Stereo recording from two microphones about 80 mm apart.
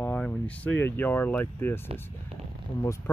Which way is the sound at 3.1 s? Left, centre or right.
Left.